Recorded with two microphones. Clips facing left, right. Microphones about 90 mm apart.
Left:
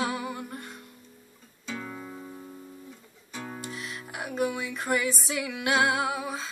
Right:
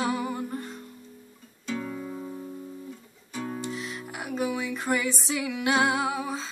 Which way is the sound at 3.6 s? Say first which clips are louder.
Right 4 dB; 25° right (ahead or behind).